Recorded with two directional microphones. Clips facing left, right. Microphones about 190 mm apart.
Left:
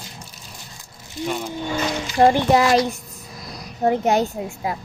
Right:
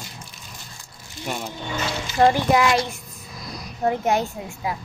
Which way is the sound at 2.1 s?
35° left (ahead or behind).